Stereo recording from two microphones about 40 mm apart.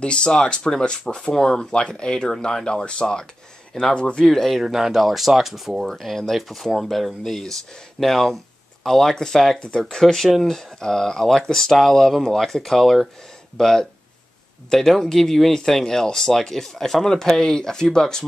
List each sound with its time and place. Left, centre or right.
0.0 s speech: left
4.3 s speech: centre
4.6 s speech: centre